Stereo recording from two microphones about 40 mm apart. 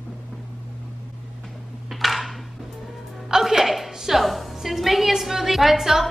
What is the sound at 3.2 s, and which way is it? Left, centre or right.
A woman's voice, centre.